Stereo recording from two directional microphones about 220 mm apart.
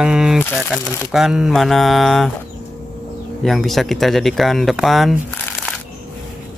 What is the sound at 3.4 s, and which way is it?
Speech, centre (ahead or behind).